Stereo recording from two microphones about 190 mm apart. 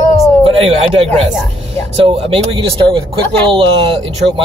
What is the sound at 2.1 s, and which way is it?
Speech, 30° right (ahead or behind).